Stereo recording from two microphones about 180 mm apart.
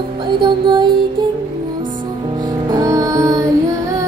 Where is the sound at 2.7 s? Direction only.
20° right (ahead or behind).